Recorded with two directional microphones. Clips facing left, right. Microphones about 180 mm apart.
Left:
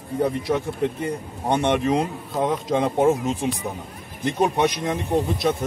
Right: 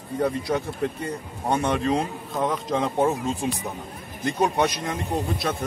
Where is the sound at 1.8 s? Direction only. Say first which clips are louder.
Left 2 dB; 15° left (ahead or behind).